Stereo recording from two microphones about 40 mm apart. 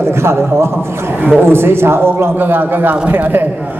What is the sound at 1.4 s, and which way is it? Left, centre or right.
A man's voice, right.